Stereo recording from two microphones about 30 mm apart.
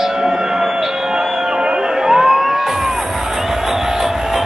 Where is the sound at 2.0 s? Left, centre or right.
Centre.